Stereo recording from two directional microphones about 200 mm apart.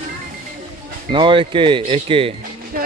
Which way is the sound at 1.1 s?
25° right (ahead or behind).